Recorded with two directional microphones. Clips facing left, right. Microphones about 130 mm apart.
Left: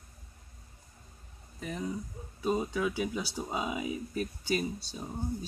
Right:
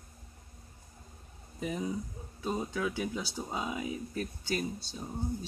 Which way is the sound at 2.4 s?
10° left (ahead or behind).